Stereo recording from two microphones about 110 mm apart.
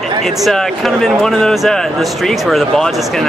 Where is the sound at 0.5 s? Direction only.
Centre (ahead or behind).